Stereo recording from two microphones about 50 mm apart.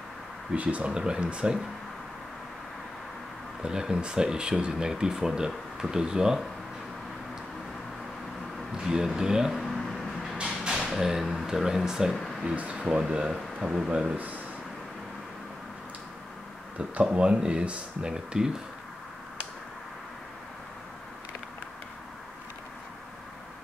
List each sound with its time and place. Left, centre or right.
0.6 s speech: right
0.9 s speech: centre
3.6 s speech: centre
8.7 s speech: centre
9.5 s a sound: centre
10.7 s speech: centre
12.5 s speech: right
14.1 s speech: right
16.7 s speech: right